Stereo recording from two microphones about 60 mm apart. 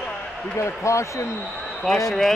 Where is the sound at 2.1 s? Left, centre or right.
Centre.